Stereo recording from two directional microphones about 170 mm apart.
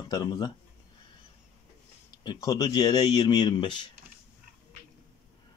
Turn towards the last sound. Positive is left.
turn(degrees=25)  # may be behind; listen again after turning